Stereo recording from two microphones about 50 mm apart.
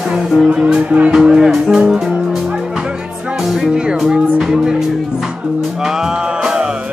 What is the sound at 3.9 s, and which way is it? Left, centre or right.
Speech, centre.